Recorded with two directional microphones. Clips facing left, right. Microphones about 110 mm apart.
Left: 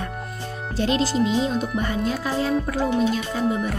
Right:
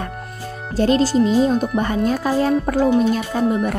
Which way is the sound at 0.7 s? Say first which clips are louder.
Right 6 dB; 40° right (ahead or behind).